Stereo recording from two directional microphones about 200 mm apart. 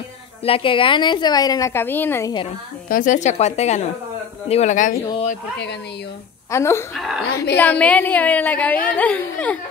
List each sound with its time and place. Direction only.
0.5 s a woman's voice: 25° left (ahead or behind)
2.9 s a woman's voice: 40° left (ahead or behind)
6.5 s speech: 15° left (ahead or behind)
7.0 s a woman's voice: centre (ahead or behind)